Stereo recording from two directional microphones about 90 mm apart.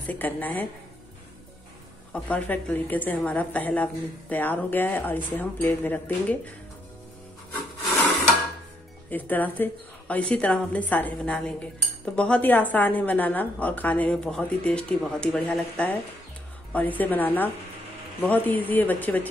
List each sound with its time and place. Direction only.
0.0 s a woman's voice: 20° left (ahead or behind)
2.1 s a woman's voice: 15° left (ahead or behind)
9.1 s a woman's voice: 20° left (ahead or behind)